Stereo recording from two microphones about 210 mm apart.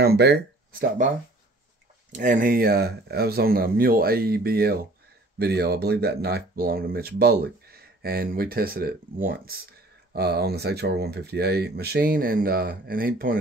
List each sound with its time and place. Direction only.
0.0 s speech: 50° right (ahead or behind)
2.1 s speech: 40° right (ahead or behind)